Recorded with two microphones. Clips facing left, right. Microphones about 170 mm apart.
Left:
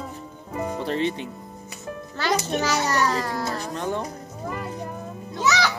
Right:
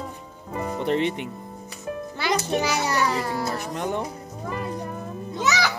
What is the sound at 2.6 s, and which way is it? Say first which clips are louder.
A child's voice: left 1 dB; 10° right (ahead or behind).